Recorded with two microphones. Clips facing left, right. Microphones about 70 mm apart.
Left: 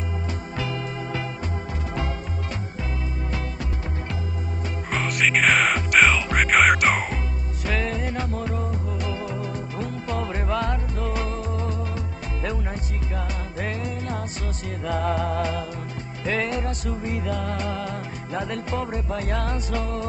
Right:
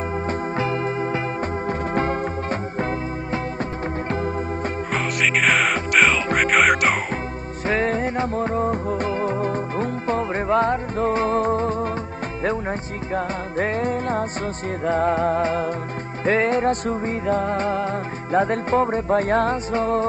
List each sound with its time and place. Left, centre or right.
0.3 s music: right
4.9 s music: centre
7.6 s music: right
13.1 s music: right